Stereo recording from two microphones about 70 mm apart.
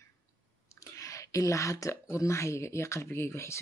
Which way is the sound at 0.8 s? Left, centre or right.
Left.